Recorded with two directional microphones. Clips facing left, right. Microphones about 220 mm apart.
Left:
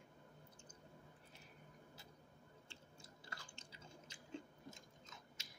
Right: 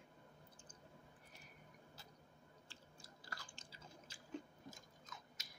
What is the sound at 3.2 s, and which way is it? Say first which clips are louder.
Chewing: right 1 dB; 25° left (ahead or behind).